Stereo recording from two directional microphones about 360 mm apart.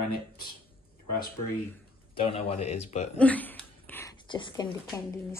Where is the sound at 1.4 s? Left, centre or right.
Left.